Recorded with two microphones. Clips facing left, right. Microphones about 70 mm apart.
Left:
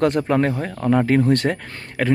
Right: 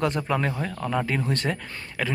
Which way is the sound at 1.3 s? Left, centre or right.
Left.